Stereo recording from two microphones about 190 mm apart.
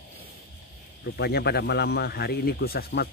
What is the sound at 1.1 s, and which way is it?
Speech, 60° left (ahead or behind).